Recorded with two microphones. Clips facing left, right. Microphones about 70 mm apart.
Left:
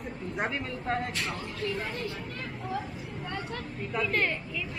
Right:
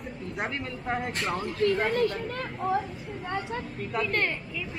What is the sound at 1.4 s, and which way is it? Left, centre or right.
Speech, right.